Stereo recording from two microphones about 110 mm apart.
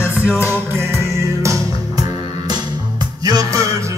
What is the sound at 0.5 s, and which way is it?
Music, 20° right (ahead or behind).